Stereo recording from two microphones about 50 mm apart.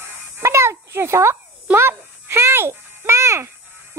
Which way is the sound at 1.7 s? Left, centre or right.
Right.